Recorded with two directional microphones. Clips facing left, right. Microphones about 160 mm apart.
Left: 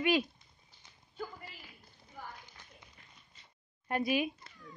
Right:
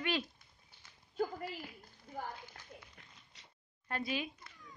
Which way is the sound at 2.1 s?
55° right (ahead or behind).